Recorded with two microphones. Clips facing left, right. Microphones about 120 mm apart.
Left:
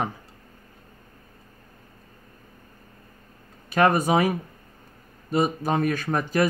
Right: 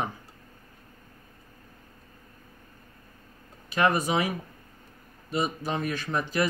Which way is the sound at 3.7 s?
50° left (ahead or behind).